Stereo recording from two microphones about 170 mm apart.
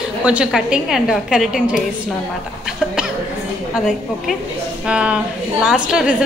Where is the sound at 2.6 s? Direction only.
5° right (ahead or behind).